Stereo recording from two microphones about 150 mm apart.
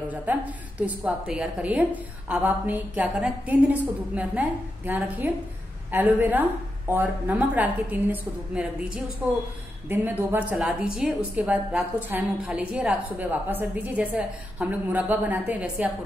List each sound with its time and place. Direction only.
0.1 s a woman's voice: 10° right (ahead or behind)
10.5 s a woman's voice: 5° right (ahead or behind)